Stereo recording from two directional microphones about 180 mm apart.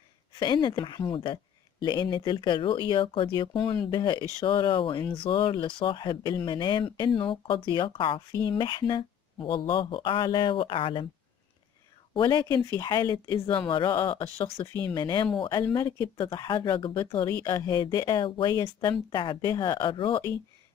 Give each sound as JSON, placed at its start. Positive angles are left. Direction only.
{"t": 0.4, "sound": "speech", "side_deg": 25}
{"t": 12.1, "sound": "speech", "side_deg": 25}
{"t": 13.7, "sound": "speech", "side_deg": 25}